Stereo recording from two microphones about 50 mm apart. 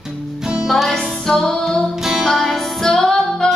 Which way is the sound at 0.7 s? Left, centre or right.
Centre.